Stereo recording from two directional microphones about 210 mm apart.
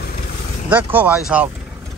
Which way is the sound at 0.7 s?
5° right (ahead or behind).